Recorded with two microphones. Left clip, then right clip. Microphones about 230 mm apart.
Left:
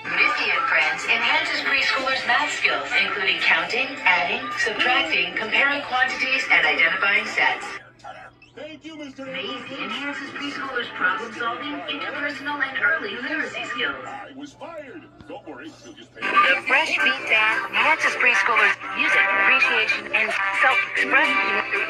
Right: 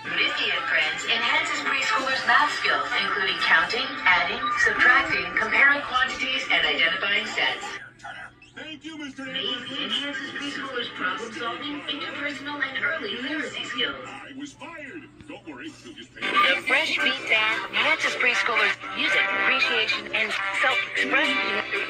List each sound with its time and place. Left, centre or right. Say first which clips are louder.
0.2 s music: left 4 dB; centre
3.9 s speech: left 1 dB; centre
6.0 s speech: left 4 dB; centre
10.0 s speech: left 1 dB; centre
16.3 s speech: left 3 dB; centre